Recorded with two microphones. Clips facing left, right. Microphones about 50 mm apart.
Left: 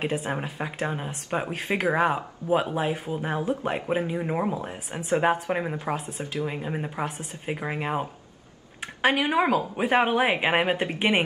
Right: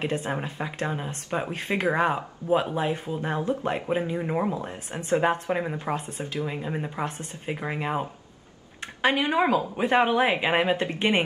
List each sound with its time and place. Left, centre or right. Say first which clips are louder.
0.0 s speech: even; centre